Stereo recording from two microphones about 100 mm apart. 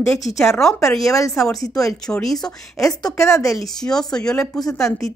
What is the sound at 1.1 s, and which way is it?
Speech, 30° left (ahead or behind).